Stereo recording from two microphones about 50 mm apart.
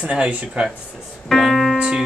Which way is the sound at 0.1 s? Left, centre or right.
Right.